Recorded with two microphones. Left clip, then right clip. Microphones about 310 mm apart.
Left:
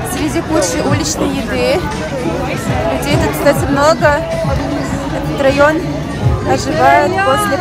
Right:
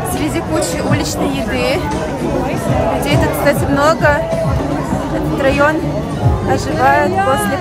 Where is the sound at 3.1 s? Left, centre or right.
Centre.